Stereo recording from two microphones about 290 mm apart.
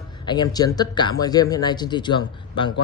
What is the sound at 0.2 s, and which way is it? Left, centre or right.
Speech, centre.